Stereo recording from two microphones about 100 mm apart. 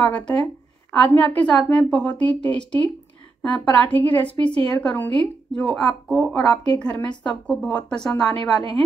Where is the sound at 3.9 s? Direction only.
55° left (ahead or behind).